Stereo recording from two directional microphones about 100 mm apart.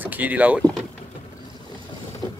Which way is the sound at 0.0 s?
15° right (ahead or behind).